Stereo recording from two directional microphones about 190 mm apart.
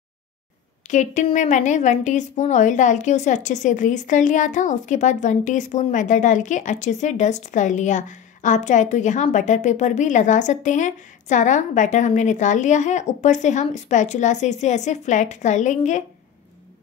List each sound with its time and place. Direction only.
0.8 s speech: 40° left (ahead or behind)